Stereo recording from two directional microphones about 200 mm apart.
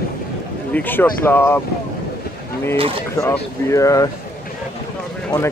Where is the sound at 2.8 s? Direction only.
25° right (ahead or behind).